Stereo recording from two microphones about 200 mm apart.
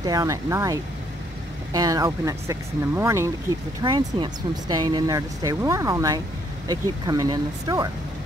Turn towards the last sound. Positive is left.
turn(degrees=-20)  # may be behind; listen again after turning